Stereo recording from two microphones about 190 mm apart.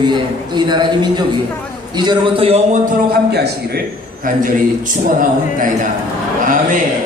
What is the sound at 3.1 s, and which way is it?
A man's voice, 60° right (ahead or behind).